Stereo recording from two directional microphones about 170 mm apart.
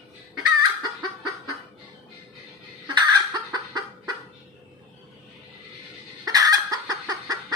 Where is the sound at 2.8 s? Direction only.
25° right (ahead or behind).